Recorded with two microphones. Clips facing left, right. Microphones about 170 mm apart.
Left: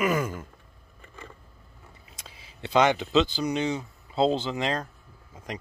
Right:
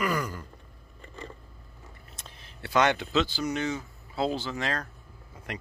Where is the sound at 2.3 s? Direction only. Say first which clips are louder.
Right 1 dB; 10° left (ahead or behind).